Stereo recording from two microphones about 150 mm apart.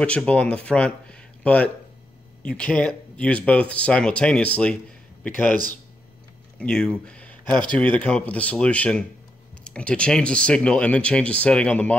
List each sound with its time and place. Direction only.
0.0 s speech: 10° left (ahead or behind)
6.6 s speech: 5° left (ahead or behind)